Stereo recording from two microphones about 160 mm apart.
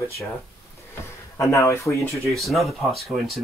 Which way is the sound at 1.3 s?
20° left (ahead or behind).